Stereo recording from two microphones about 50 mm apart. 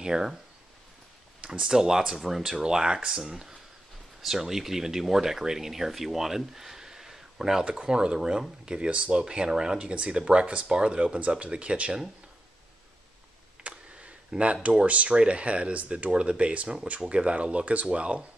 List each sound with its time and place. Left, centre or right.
0.0 s speech: centre
1.4 s speech: centre
13.7 s a sound: right
14.4 s speech: right